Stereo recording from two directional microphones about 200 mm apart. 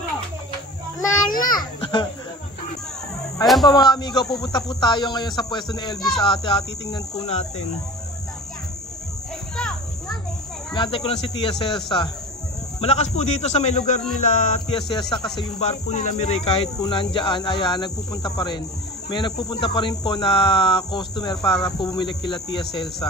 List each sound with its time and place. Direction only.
1.5 s children playing: 20° left (ahead or behind)
3.6 s speech: 20° left (ahead or behind)
9.6 s children playing: centre (ahead or behind)
10.7 s speech: 25° left (ahead or behind)
12.8 s a man's voice: 35° left (ahead or behind)
14.7 s speech: 20° left (ahead or behind)
15.6 s speech: 35° left (ahead or behind)